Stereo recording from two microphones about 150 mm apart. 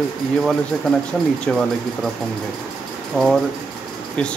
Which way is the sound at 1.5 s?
5° left (ahead or behind).